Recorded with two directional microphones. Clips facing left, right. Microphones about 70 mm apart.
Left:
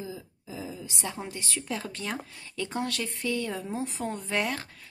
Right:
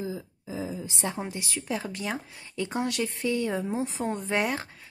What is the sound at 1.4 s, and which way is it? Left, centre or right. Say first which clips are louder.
Speech: right 2 dB; centre.